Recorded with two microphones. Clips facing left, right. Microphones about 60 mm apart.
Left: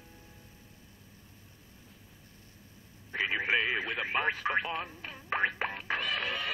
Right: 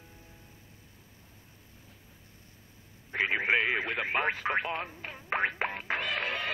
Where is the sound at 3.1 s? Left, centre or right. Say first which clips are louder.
Right 2 dB; right.